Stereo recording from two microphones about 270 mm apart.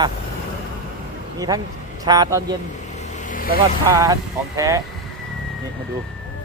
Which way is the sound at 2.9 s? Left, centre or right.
Left.